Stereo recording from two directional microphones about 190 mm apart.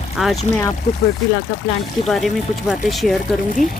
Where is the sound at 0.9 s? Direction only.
40° left (ahead or behind).